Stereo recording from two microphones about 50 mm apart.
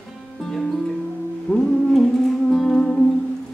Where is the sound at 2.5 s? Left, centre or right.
Centre.